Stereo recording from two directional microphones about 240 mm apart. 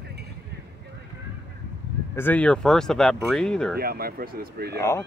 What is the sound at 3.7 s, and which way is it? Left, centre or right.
Speech, right.